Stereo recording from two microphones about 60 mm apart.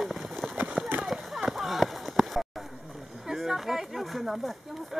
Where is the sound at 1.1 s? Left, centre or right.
Centre.